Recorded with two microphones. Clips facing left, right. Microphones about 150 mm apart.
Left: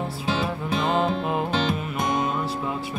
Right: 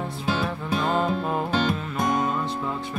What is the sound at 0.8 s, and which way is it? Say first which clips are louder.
Music: left 1 dB; 20° left (ahead or behind).